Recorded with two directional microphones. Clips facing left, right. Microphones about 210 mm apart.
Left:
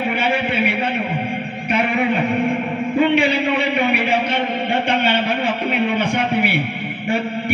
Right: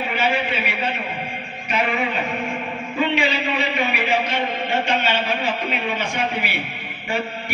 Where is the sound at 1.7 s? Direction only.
55° left (ahead or behind).